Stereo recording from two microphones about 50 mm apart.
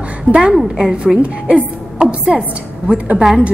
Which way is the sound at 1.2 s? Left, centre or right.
Right.